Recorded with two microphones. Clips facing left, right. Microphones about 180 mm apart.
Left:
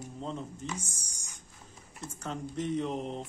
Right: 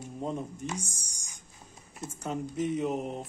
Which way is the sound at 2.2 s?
10° right (ahead or behind).